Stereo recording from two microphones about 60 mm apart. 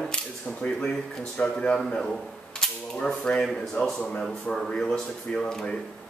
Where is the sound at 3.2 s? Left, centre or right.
Centre.